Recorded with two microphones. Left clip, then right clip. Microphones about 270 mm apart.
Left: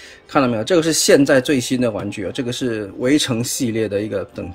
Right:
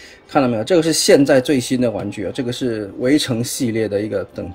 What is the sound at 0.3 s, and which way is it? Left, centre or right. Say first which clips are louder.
Speech: right 1 dB; centre.